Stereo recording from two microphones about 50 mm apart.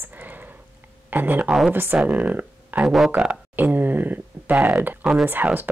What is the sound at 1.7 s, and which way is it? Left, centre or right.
Speech, right.